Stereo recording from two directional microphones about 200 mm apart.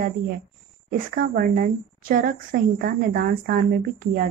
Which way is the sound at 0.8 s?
45° right (ahead or behind).